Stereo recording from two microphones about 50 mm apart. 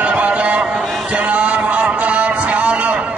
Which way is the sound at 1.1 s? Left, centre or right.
Right.